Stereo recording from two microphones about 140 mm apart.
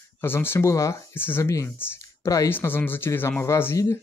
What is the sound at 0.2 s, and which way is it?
Speech, 15° left (ahead or behind).